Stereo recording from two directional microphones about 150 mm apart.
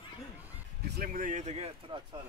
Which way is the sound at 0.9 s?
65° right (ahead or behind).